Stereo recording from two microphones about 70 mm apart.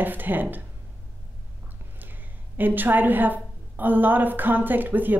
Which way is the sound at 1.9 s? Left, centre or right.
Right.